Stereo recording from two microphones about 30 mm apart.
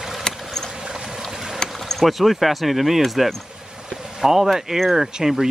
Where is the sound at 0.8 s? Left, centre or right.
Centre.